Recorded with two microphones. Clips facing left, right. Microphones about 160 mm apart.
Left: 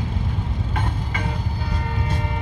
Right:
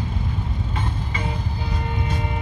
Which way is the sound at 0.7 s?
60° left (ahead or behind).